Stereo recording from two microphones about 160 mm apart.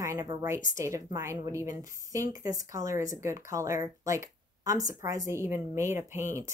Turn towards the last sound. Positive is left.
turn(degrees=-15)  # may be behind; listen again after turning